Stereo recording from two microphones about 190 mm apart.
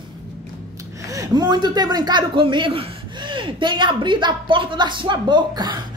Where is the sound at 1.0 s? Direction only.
20° right (ahead or behind).